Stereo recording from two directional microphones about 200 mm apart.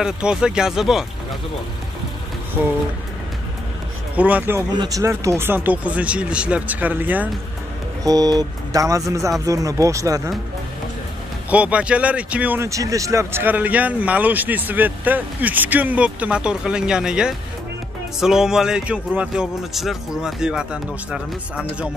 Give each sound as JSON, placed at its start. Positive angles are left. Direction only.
{"t": 0.0, "sound": "speech", "side_deg": -5}
{"t": 4.2, "sound": "speech", "side_deg": -5}
{"t": 11.5, "sound": "speech", "side_deg": -5}